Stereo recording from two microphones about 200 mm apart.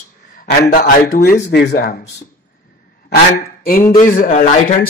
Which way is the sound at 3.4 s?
45° left (ahead or behind).